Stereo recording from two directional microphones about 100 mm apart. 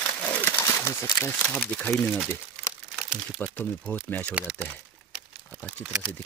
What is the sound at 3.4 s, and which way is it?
Speech, 10° left (ahead or behind).